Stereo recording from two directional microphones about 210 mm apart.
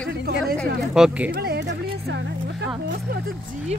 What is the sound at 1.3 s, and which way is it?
Speech, 50° right (ahead or behind).